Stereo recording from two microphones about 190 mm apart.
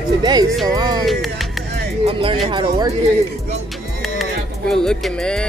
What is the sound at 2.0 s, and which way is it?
Speech, 30° right (ahead or behind).